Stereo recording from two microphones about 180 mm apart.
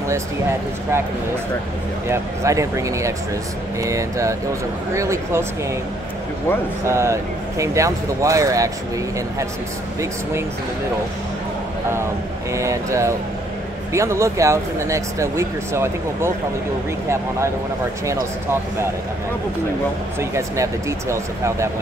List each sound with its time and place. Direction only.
2.0 s speech: 15° right (ahead or behind)
6.9 s speech: 15° right (ahead or behind)
12.5 s speech: 15° right (ahead or behind)
18.0 s speech: 15° right (ahead or behind)
20.2 s speech: 15° right (ahead or behind)